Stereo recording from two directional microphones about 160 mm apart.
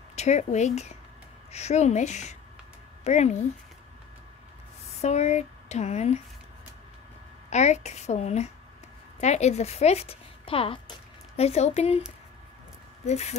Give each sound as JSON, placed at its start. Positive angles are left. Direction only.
{"t": 0.1, "sound": "speech", "side_deg": 45}
{"t": 4.8, "sound": "speech", "side_deg": 40}
{"t": 7.4, "sound": "a woman's voice", "side_deg": 45}
{"t": 13.0, "sound": "speech", "side_deg": 45}